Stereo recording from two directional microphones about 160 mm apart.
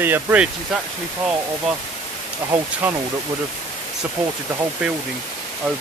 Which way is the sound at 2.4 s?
10° right (ahead or behind).